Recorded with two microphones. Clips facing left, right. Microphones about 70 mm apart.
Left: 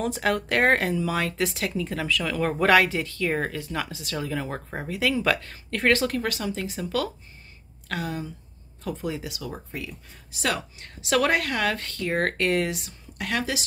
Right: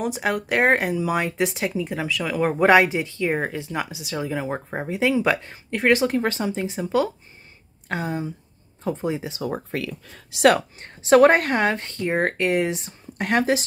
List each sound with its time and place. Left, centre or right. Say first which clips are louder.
0.0 s speech: right 1 dB; centre
9.7 s speech: right 7 dB; right
10.8 s a woman's voice: right 10 dB; right